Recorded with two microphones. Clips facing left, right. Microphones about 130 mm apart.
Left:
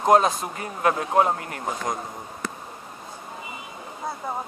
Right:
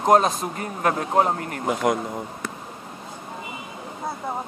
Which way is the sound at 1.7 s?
65° right (ahead or behind).